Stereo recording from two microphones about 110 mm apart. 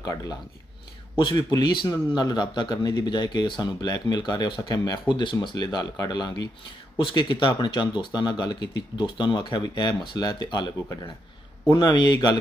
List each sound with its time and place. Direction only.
1.5 s a man's voice: 40° left (ahead or behind)